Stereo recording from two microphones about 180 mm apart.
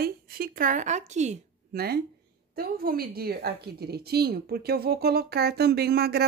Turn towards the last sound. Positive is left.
turn(degrees=-60)  # may be behind; listen again after turning